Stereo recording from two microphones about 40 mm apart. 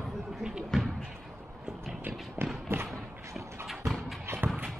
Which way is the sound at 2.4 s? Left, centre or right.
Right.